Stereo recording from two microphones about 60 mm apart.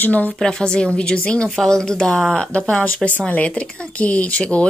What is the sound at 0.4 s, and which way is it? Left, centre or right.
Speech, centre.